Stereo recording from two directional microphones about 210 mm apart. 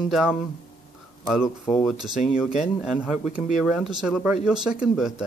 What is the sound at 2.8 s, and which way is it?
Speech, 5° right (ahead or behind).